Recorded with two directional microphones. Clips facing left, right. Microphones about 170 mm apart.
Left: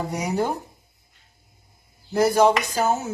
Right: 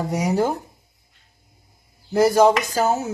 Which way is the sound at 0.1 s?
40° right (ahead or behind).